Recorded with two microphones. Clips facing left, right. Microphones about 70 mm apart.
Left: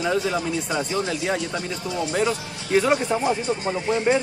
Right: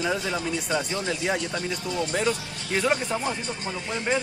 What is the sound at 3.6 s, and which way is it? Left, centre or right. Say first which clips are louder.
Speech: left 8 dB; left.